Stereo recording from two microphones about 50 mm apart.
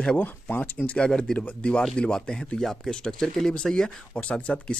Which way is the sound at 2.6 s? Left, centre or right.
Centre.